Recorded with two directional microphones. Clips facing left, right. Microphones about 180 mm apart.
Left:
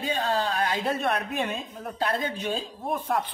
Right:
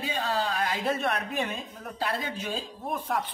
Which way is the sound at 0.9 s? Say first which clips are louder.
Left 2 dB; 30° left (ahead or behind).